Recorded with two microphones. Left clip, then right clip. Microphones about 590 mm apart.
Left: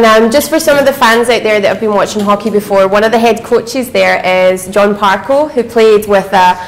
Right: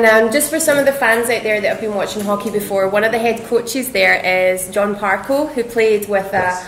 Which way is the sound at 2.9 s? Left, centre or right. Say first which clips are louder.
Left 7 dB; left.